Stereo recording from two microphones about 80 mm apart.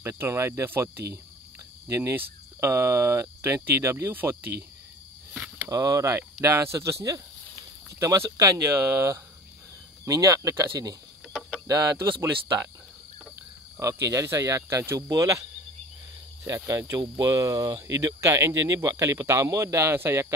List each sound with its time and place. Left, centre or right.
0.0 s speech: right
5.7 s speech: right
13.7 s speech: right
16.4 s speech: right